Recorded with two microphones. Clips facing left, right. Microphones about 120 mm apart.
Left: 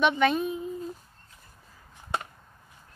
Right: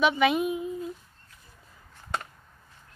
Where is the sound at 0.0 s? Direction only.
5° right (ahead or behind).